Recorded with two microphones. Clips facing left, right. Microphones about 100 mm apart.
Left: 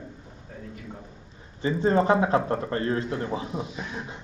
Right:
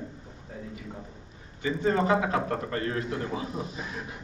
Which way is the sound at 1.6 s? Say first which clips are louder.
Left 3 dB; 30° left (ahead or behind).